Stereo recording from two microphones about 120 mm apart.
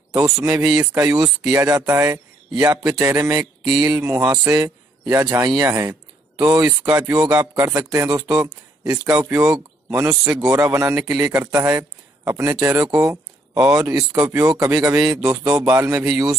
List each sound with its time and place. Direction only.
0.1 s speech: 25° right (ahead or behind)
3.2 s a sound: 30° right (ahead or behind)
4.3 s a man's voice: 25° right (ahead or behind)
6.6 s speech: 25° right (ahead or behind)
14.1 s speech: 5° right (ahead or behind)
14.4 s speech: 25° right (ahead or behind)
15.3 s speech: 5° right (ahead or behind)
15.7 s speech: 20° right (ahead or behind)